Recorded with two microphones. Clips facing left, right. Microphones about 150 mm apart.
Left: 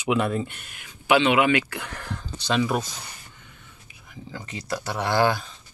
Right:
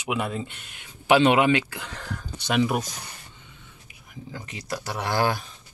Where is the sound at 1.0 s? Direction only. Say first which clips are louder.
Right 1 dB; 35° right (ahead or behind).